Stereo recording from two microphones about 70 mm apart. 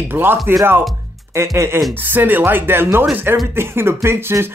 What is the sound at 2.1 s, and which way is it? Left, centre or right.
Speech, right.